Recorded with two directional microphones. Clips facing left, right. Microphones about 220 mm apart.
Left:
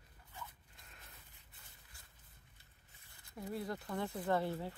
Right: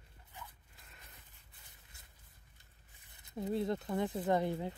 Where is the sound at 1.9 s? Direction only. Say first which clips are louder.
Right 1 dB; 20° right (ahead or behind).